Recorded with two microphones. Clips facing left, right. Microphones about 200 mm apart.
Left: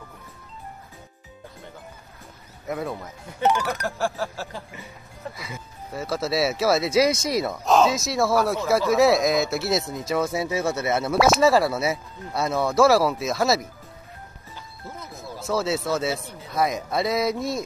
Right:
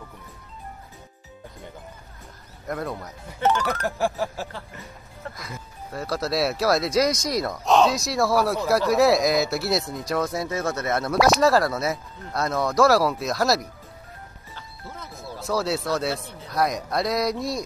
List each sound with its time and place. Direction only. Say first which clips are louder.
2.6 s speech: left 1 dB; 5° left (ahead or behind)
3.8 s music: right 2 dB; 15° right (ahead or behind)
4.5 s speech: left 1 dB; 15° left (ahead or behind)
15.3 s speech: left 1 dB; centre (ahead or behind)